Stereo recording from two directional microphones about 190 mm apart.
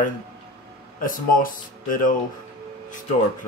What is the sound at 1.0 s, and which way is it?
Speech, 45° left (ahead or behind).